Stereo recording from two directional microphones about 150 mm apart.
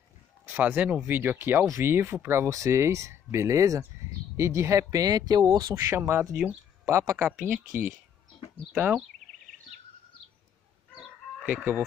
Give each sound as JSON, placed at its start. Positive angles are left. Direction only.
{"t": 0.5, "sound": "speech", "side_deg": -10}
{"t": 8.7, "sound": "speech", "side_deg": -15}
{"t": 11.0, "sound": "chicken", "side_deg": -10}